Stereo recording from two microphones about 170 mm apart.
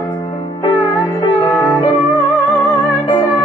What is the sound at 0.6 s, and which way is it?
Music, 25° left (ahead or behind).